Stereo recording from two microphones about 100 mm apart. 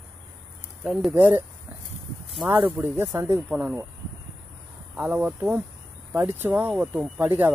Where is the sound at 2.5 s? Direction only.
20° right (ahead or behind).